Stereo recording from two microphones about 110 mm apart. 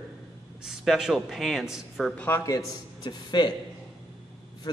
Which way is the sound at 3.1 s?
40° left (ahead or behind).